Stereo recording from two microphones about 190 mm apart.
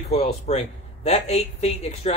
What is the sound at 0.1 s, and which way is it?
A man's voice, 35° left (ahead or behind).